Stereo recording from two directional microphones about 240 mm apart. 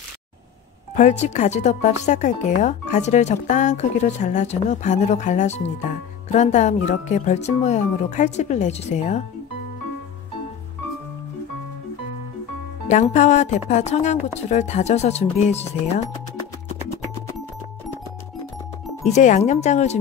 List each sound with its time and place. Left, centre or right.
0.9 s a woman's voice: left
12.9 s a woman's voice: left
19.0 s a woman's voice: left